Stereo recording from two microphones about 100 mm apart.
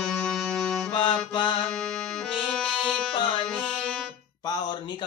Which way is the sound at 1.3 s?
60° left (ahead or behind).